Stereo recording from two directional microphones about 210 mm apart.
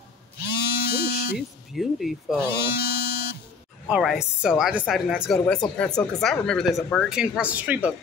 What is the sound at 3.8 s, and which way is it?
Speech, 5° right (ahead or behind).